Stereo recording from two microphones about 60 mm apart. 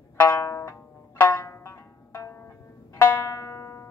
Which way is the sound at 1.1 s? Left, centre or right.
Left.